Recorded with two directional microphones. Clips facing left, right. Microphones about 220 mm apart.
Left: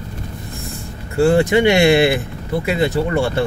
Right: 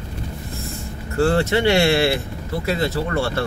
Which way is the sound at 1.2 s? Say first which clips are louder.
Left 5 dB; 15° left (ahead or behind).